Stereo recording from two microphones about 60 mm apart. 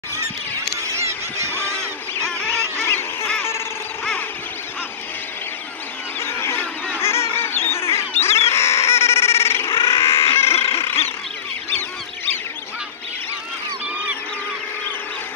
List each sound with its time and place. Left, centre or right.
0.9 s honk: right
2.5 s music: left
6.1 s a sound: left
7.0 s bird: left